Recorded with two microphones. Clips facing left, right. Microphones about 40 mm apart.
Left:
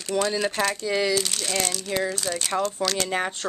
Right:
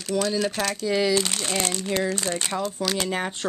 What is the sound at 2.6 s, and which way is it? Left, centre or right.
Speech, centre.